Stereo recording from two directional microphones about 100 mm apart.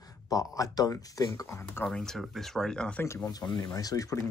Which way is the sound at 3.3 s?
40° left (ahead or behind).